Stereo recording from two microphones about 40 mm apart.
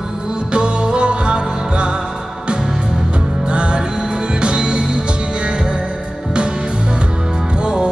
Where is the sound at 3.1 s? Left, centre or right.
Right.